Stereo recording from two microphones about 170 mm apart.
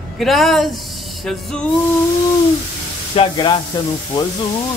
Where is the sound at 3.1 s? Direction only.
30° left (ahead or behind).